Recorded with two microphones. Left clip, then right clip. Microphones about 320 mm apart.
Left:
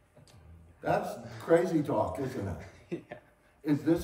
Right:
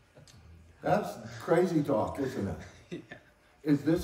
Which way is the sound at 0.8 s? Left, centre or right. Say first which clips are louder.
Right 1 dB; centre.